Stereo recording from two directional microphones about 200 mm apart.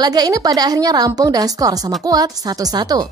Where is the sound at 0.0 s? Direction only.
20° right (ahead or behind).